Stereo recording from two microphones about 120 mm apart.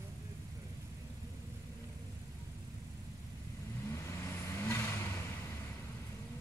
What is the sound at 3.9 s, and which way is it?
Vehicle, 20° left (ahead or behind).